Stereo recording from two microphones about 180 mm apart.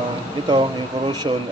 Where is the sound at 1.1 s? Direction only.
25° right (ahead or behind).